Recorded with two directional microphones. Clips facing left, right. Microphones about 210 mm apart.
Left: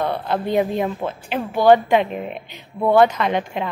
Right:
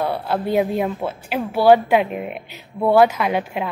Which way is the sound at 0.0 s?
5° right (ahead or behind).